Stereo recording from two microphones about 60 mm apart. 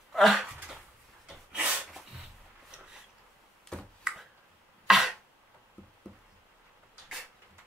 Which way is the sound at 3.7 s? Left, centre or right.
Centre.